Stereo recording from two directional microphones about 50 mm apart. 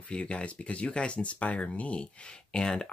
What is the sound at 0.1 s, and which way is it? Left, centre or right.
Speech, left.